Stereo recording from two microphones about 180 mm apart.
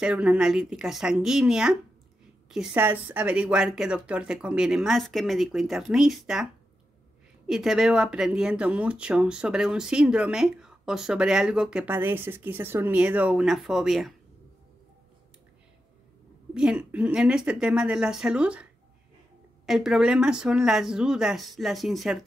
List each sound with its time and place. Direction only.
0.0 s speech: 5° right (ahead or behind)
16.5 s speech: 5° right (ahead or behind)